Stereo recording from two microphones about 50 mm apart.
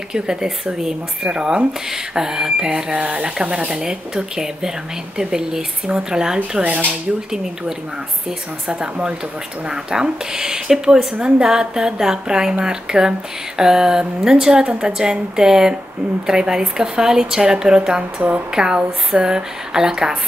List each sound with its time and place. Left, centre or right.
0.1 s speech: centre
6.6 s speech: right
8.6 s speech: right